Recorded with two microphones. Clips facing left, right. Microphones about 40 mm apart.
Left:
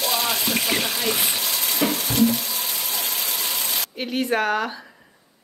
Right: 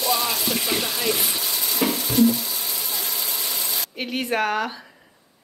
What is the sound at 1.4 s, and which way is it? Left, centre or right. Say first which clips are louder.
Water: left 1 dB; left.